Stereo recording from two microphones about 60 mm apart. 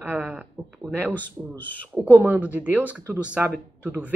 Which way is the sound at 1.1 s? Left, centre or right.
Left.